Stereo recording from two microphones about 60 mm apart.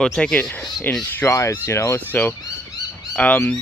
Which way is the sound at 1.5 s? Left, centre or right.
Left.